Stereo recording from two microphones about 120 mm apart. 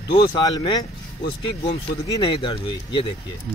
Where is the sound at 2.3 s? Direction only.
45° left (ahead or behind).